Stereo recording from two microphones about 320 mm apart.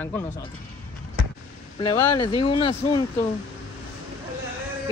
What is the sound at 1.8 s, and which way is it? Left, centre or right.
Speech, centre.